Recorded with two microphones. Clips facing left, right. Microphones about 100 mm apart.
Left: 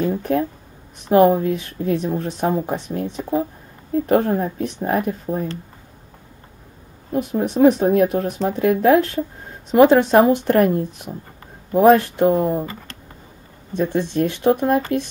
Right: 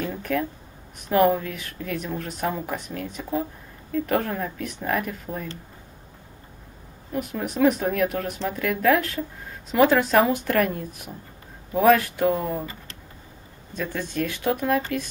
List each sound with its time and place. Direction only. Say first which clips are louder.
0.0 s speech: left 6 dB; 30° left (ahead or behind)
7.1 s speech: left 7 dB; 25° left (ahead or behind)
13.7 s speech: left 8 dB; 25° left (ahead or behind)